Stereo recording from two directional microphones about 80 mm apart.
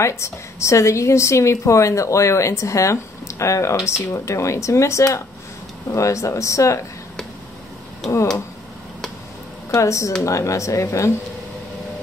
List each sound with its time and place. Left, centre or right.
0.0 s a woman's voice: left
9.7 s a woman's voice: left